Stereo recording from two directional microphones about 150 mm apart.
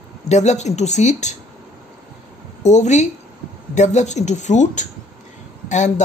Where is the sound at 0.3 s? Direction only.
50° left (ahead or behind).